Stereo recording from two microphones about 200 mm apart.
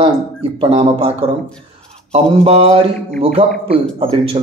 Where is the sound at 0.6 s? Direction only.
25° right (ahead or behind).